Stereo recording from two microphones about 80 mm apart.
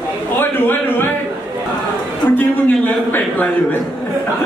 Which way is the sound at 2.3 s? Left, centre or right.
Left.